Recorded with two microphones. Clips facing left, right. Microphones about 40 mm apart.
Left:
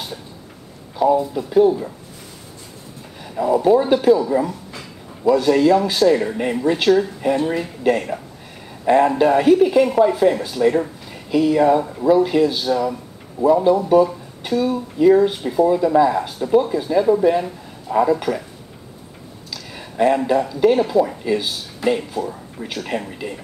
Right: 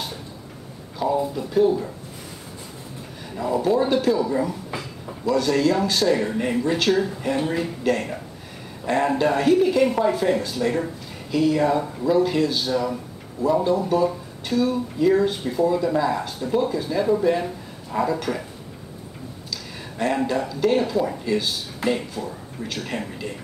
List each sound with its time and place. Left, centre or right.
0.9 s speech: centre
3.3 s speech: centre
5.2 s speech: centre
7.8 s speech: centre
9.8 s speech: centre
19.5 s a sound: centre
20.2 s speech: centre